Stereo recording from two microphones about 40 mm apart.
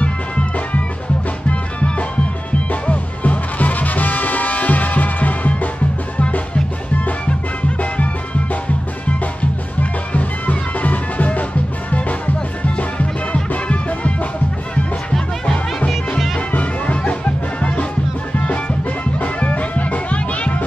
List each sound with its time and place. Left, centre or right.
1.5 s music: left
9.4 s music: left
12.6 s music: left
15.1 s music: centre
16.5 s music: left
19.1 s music: left